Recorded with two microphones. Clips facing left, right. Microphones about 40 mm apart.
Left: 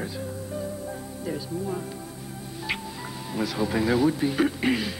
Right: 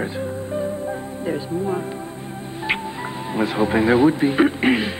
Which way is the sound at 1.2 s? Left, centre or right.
Right.